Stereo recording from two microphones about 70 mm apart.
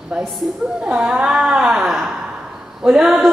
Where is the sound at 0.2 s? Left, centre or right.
Centre.